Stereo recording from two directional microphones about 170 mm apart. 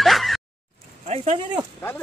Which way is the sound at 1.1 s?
40° right (ahead or behind).